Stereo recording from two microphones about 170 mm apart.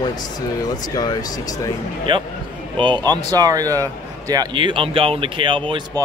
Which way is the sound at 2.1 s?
30° right (ahead or behind).